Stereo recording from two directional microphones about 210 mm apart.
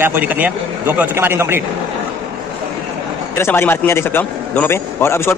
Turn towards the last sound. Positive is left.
turn(degrees=10)  # may be behind; listen again after turning